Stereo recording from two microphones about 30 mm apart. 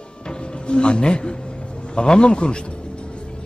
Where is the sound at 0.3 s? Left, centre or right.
Left.